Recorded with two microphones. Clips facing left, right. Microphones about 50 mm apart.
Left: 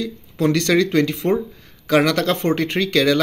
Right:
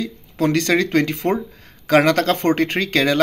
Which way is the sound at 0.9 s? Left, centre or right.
Right.